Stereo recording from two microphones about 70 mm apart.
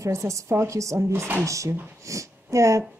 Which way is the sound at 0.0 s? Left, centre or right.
Right.